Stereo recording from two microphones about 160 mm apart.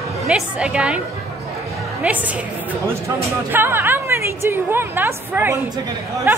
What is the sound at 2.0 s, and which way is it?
Speech, 10° right (ahead or behind).